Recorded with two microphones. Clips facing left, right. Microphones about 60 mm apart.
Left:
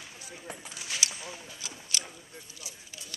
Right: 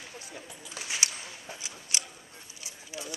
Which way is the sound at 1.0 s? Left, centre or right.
Right.